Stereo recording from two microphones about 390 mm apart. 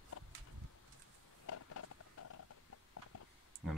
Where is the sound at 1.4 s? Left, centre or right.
Left.